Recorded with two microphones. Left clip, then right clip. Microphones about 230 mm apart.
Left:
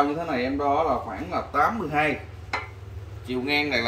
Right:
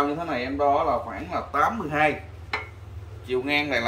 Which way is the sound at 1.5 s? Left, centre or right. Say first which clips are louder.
Even; centre.